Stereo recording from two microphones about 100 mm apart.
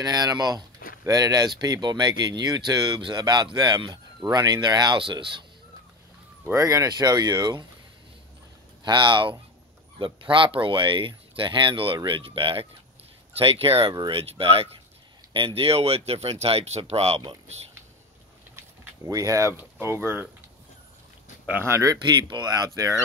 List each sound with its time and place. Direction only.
0.0 s speech: 40° right (ahead or behind)
6.5 s speech: 35° right (ahead or behind)
8.8 s speech: 50° right (ahead or behind); by 14.7 s 75° right (ahead or behind)
15.3 s speech: 65° right (ahead or behind); by 17.2 s 90° right
19.0 s speech: 35° right (ahead or behind)
21.5 s speech: 25° right (ahead or behind)
22.3 s speech: 45° right (ahead or behind)